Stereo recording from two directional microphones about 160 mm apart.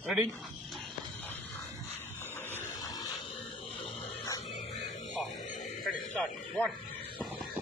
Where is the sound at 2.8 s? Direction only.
25° left (ahead or behind).